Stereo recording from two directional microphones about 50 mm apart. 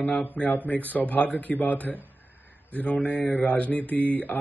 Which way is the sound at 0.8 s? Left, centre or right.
Left.